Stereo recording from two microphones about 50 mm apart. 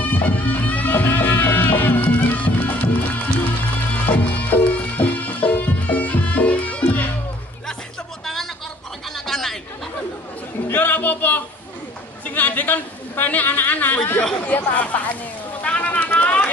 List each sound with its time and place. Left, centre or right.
0.0 s music: left
2.4 s music: left
9.1 s chatter: centre
10.7 s music: left
12.3 s a woman's voice: left
15.6 s bird: left